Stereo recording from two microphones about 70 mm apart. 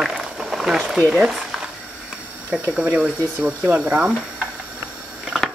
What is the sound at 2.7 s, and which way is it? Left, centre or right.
Speech, centre.